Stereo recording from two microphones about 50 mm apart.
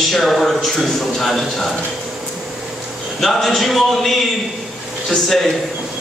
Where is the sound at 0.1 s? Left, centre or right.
Centre.